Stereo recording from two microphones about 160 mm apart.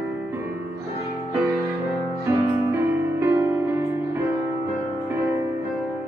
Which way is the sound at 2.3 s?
20° right (ahead or behind).